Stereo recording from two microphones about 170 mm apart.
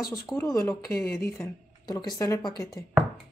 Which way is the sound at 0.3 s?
15° left (ahead or behind).